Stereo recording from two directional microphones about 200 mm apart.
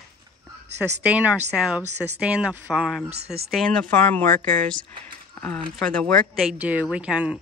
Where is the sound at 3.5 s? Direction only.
Centre (ahead or behind).